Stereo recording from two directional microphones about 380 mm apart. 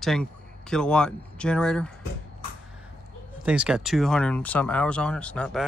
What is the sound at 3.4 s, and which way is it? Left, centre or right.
Speech, centre.